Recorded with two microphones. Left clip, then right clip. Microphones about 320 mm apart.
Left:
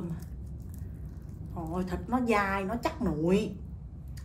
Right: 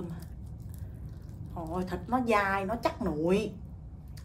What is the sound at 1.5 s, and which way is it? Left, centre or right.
A woman's voice, centre.